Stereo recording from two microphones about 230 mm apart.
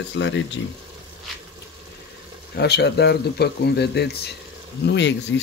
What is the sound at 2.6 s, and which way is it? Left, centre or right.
Speech, left.